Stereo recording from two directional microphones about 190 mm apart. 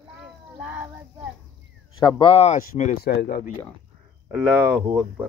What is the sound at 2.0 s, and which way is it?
Speech, 25° left (ahead or behind).